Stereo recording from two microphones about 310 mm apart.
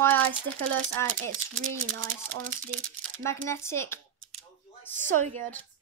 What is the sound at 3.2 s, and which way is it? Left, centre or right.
Speech, centre.